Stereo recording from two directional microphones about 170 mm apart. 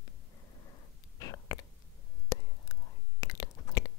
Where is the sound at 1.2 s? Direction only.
20° left (ahead or behind).